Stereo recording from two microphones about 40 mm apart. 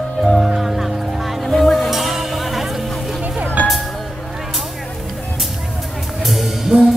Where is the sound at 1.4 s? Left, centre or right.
Centre.